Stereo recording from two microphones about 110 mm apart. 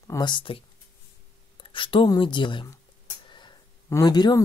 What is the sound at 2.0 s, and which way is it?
Speech, 45° left (ahead or behind).